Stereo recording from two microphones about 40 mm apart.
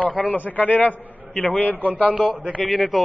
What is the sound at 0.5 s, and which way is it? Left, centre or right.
A man's voice, left.